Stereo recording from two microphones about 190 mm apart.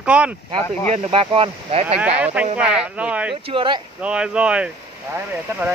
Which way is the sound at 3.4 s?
25° right (ahead or behind).